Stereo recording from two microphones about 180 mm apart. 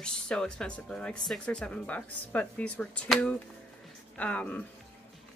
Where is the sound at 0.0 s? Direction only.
5° left (ahead or behind).